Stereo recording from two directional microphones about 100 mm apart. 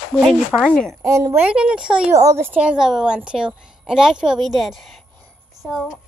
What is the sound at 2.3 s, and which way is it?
Speech, 25° right (ahead or behind).